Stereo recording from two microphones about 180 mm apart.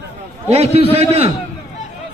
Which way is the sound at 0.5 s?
35° right (ahead or behind).